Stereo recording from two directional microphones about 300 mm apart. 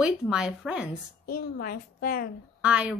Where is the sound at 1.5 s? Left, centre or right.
Left.